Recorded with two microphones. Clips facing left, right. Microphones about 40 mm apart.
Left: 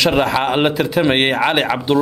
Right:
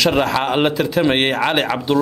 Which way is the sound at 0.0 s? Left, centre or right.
Centre.